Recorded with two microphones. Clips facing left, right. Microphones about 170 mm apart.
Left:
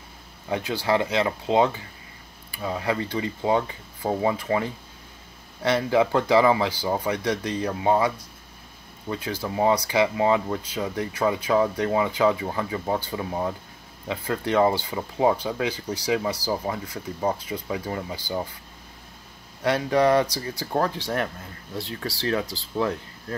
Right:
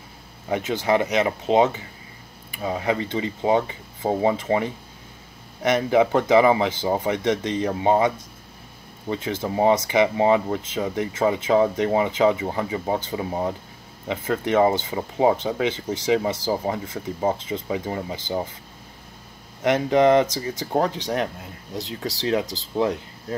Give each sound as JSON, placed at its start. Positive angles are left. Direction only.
{"t": 0.5, "sound": "speech", "side_deg": -20}
{"t": 19.6, "sound": "speech", "side_deg": -20}